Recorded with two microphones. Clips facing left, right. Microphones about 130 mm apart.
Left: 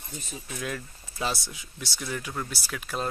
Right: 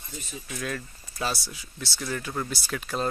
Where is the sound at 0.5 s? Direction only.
15° left (ahead or behind).